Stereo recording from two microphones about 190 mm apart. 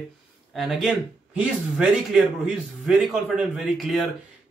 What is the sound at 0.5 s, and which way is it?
Speech, centre (ahead or behind).